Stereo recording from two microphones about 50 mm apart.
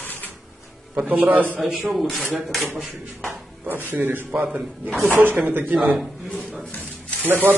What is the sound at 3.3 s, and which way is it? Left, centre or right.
Speech, right.